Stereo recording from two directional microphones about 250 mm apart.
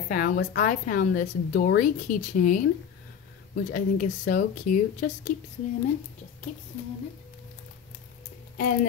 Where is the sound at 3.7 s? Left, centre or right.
Left.